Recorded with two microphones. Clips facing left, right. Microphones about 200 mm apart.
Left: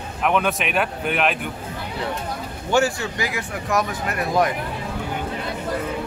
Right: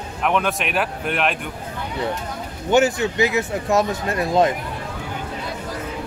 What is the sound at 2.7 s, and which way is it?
Speech, 20° right (ahead or behind).